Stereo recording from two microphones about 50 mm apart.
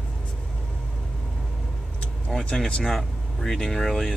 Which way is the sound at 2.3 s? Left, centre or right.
Centre.